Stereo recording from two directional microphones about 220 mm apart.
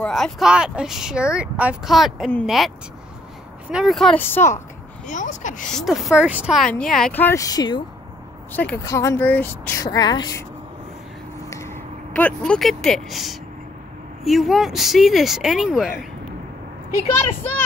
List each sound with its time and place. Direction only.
0.0 s speech: centre (ahead or behind)
3.7 s speech: centre (ahead or behind)
5.0 s speech: 35° left (ahead or behind)
5.7 s speech: centre (ahead or behind); by 10.4 s 20° left (ahead or behind)
11.5 s speech: 10° left (ahead or behind)